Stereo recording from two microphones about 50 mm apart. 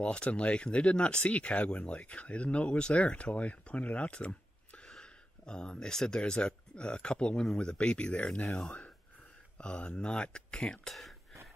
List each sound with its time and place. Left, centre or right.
0.0 s speech: left